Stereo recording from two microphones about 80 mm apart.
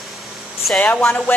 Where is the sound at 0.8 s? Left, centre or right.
Left.